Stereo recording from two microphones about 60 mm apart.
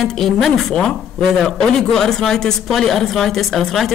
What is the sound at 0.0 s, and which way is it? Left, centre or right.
Speech, centre.